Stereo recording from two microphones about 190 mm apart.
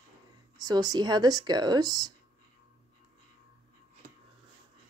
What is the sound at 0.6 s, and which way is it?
Speech, 20° right (ahead or behind).